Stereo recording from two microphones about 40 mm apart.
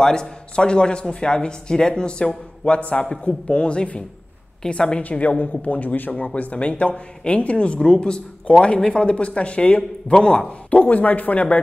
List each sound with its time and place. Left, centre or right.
0.0 s speech: centre
5.4 s speech: left
10.7 s speech: left